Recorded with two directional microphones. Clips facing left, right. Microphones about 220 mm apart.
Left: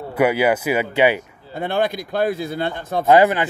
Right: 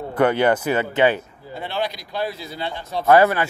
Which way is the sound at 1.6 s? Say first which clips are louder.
Left 6 dB; 50° left (ahead or behind).